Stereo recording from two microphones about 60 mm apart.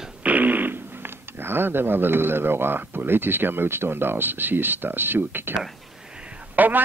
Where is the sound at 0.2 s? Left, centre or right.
Right.